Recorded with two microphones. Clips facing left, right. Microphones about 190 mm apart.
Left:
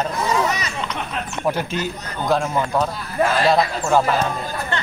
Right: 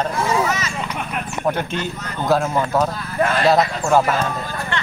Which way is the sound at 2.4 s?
5° right (ahead or behind).